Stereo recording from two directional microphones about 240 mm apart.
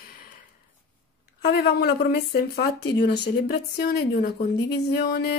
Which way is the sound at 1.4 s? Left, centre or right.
Left.